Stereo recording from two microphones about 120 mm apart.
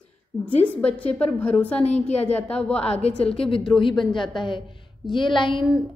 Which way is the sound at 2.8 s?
55° left (ahead or behind).